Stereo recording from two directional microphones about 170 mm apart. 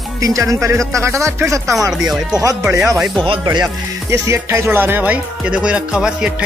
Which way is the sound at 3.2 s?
30° right (ahead or behind).